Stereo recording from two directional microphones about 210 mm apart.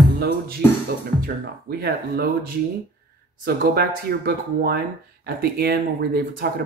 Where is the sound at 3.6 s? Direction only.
45° right (ahead or behind).